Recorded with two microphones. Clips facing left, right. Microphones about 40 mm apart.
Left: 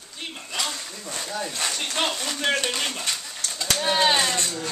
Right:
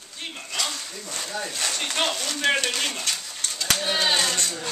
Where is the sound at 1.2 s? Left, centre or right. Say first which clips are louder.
Left 1 dB; centre.